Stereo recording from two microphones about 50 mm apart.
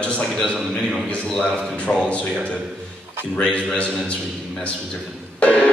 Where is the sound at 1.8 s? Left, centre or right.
Left.